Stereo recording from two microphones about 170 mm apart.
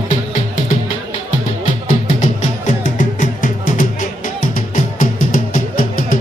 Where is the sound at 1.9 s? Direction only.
50° left (ahead or behind).